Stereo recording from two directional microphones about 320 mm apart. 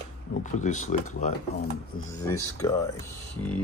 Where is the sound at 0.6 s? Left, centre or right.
Left.